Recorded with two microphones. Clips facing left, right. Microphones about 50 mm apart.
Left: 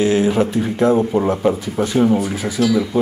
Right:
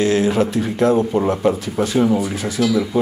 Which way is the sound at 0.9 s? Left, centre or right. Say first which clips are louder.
Left 1 dB; centre.